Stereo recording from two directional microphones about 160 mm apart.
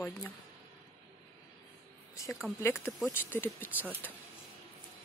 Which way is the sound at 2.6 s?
15° left (ahead or behind).